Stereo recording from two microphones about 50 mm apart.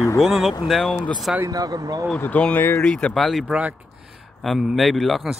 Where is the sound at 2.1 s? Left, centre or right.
Left.